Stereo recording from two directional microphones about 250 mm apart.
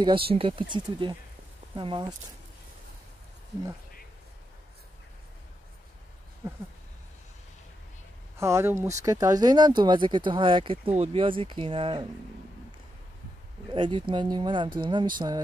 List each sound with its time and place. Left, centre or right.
0.3 s speech: right
8.4 s speech: centre
13.7 s speech: centre